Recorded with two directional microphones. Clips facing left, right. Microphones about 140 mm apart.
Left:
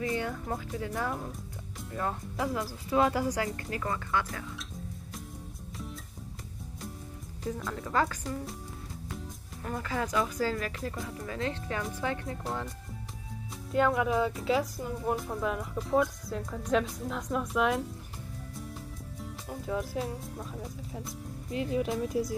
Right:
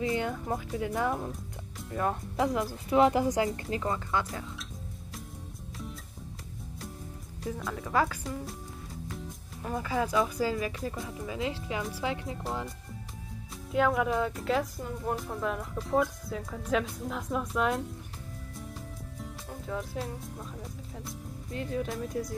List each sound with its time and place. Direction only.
0.0 s speech: 20° right (ahead or behind)
7.4 s speech: 5° right (ahead or behind)
9.6 s speech: 10° right (ahead or behind)
13.7 s speech: centre (ahead or behind)
19.6 s speech: 5° left (ahead or behind)